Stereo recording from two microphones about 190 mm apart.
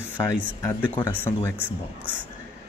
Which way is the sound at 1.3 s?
10° left (ahead or behind).